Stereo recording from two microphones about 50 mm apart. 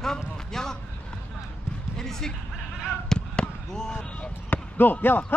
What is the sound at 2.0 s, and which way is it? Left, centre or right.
Speech, centre.